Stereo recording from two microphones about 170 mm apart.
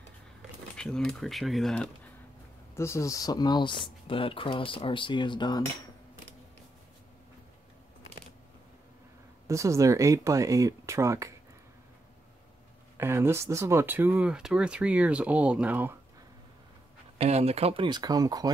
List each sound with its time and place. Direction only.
0.7 s speech: 5° left (ahead or behind)
2.7 s speech: 15° left (ahead or behind)
9.5 s speech: 15° right (ahead or behind)
12.9 s speech: 15° right (ahead or behind)
17.2 s speech: 35° right (ahead or behind); by 18.5 s 20° right (ahead or behind)